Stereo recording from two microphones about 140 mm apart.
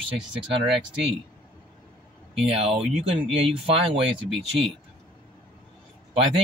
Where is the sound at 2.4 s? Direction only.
45° right (ahead or behind).